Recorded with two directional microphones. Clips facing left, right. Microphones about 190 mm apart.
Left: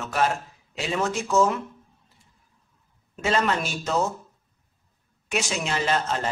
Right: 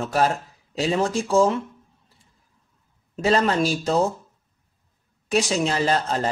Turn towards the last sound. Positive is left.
turn(degrees=-35)  # may be behind; listen again after turning